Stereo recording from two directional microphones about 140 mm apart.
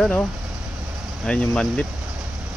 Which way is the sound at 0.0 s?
10° left (ahead or behind).